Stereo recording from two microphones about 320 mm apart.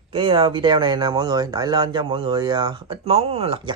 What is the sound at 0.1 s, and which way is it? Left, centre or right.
Speech, centre.